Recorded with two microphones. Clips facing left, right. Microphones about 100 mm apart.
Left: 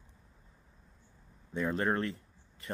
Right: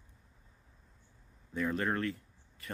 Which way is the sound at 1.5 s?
30° left (ahead or behind).